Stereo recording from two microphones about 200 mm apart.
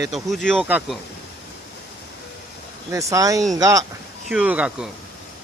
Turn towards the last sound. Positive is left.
turn(degrees=-5)  # may be behind; listen again after turning